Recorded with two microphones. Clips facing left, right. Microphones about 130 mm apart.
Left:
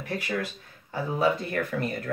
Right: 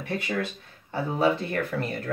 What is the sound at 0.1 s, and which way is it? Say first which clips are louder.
Speech: right 1 dB; 25° right (ahead or behind).